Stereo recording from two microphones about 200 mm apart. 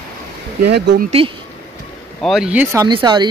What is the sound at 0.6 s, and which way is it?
Speech, 55° right (ahead or behind).